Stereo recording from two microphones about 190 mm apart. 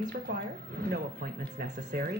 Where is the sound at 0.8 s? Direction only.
50° right (ahead or behind).